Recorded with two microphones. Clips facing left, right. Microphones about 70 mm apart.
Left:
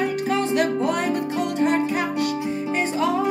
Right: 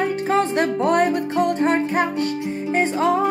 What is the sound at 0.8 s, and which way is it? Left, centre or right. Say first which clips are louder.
Music: right 4 dB; right.